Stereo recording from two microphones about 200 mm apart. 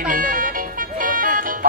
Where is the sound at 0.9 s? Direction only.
45° right (ahead or behind).